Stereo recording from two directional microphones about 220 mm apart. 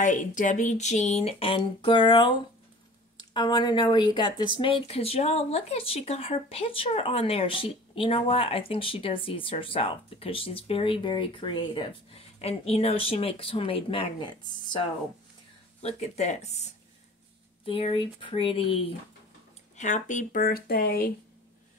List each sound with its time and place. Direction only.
0.0 s speech: 35° left (ahead or behind)
15.8 s speech: 30° left (ahead or behind)